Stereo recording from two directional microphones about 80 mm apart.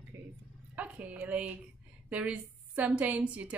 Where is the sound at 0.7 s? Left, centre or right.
Centre.